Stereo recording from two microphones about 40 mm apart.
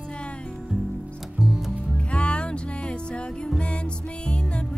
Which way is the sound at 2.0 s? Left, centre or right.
Left.